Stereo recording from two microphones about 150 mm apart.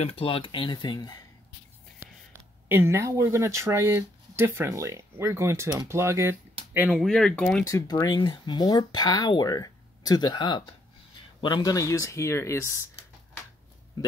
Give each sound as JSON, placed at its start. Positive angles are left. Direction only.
{"t": 0.0, "sound": "speech", "side_deg": 40}
{"t": 2.0, "sound": "a sound", "side_deg": -15}
{"t": 2.7, "sound": "speech", "side_deg": -15}
{"t": 7.0, "sound": "speech", "side_deg": 5}
{"t": 7.6, "sound": "speech", "side_deg": 25}